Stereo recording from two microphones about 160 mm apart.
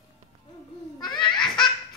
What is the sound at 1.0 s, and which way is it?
Baby laughter, 30° left (ahead or behind).